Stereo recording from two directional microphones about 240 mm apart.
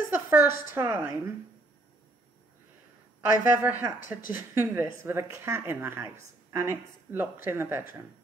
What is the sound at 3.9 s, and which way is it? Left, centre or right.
Speech, left.